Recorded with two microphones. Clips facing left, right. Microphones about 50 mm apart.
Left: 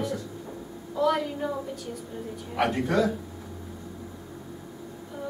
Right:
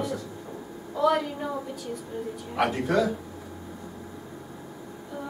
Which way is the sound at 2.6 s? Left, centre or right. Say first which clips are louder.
Even; centre.